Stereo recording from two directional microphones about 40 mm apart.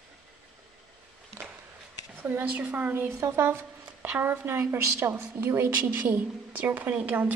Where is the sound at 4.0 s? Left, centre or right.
Right.